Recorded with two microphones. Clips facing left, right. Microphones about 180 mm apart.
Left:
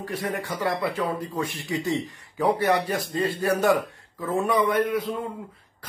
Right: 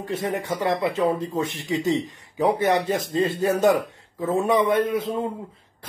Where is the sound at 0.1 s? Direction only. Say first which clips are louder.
Right 4 dB; 20° right (ahead or behind).